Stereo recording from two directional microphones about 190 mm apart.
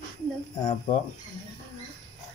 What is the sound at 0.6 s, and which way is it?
Speech, 40° left (ahead or behind).